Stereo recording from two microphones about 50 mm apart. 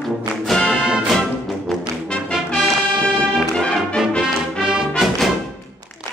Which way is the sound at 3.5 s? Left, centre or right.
Centre.